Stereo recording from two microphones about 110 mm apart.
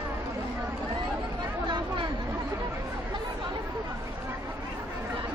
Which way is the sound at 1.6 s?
45° right (ahead or behind).